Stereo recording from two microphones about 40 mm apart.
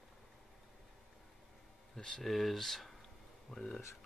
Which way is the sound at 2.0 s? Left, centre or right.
Centre.